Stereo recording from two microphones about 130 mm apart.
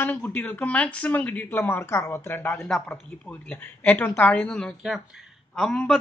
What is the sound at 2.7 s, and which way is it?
Speech, 5° left (ahead or behind).